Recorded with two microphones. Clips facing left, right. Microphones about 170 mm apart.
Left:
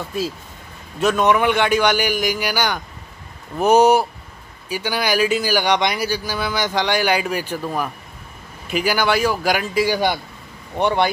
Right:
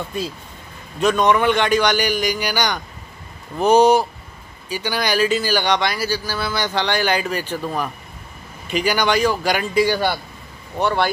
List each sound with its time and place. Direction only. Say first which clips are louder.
0.9 s speech: even; 5° left (ahead or behind)